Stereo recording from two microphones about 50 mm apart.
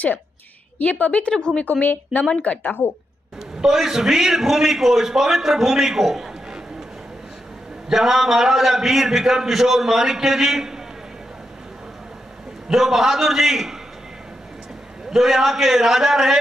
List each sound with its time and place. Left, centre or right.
0.7 s a woman's voice: left
1.3 s a woman's voice: centre
1.6 s a woman's voice: left
3.6 s a man's voice: centre
7.9 s a man's voice: centre
12.6 s a man's voice: centre
15.0 s a man's voice: centre